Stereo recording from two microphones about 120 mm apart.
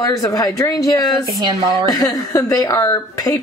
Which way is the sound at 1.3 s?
30° right (ahead or behind).